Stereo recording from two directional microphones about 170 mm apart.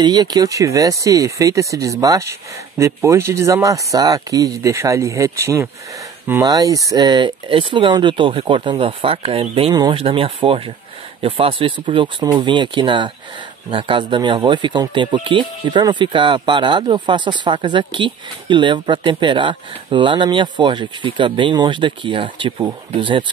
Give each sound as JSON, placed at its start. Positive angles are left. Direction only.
{"t": 0.0, "sound": "speech", "side_deg": -25}